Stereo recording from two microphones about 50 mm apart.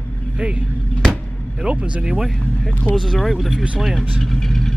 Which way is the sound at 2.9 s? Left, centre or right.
Centre.